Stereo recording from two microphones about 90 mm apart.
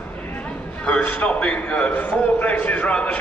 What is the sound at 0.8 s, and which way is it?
A man's voice, 10° left (ahead or behind).